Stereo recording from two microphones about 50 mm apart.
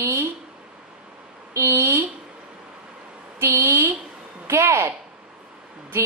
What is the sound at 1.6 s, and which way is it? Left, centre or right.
Speech, right.